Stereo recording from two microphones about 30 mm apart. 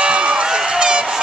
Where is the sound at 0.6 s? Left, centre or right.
Right.